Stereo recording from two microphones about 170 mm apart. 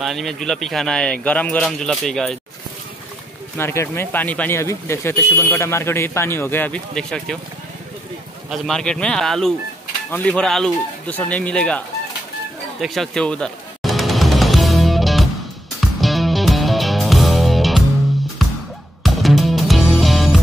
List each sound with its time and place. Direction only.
0.0 s speech: centre (ahead or behind)
3.5 s speech: 15° left (ahead or behind)
8.5 s speech: 5° left (ahead or behind)
12.8 s music: centre (ahead or behind)